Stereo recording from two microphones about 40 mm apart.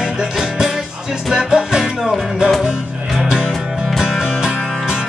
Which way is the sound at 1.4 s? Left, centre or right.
Centre.